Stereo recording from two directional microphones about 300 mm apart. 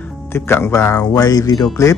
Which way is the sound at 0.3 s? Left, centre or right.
Centre.